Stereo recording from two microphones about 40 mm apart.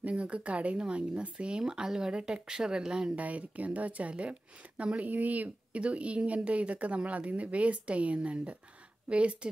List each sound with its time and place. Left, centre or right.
0.0 s speech: right
3.2 s speech: right